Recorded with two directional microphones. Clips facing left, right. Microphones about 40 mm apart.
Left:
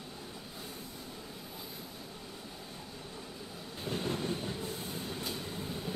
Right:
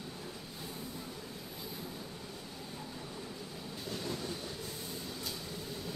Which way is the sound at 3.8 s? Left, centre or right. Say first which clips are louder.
Left 5 dB; left.